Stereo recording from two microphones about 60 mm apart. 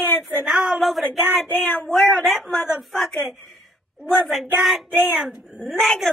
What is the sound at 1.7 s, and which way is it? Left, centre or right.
Speech, centre.